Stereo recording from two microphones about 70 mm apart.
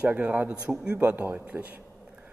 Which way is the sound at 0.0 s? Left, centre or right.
Right.